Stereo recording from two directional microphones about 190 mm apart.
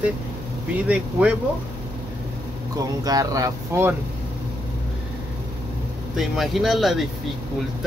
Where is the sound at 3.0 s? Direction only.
20° right (ahead or behind).